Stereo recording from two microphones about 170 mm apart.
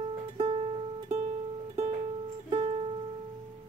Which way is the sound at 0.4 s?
35° right (ahead or behind).